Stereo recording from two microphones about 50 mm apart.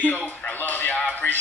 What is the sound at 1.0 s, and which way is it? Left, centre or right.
Music, left.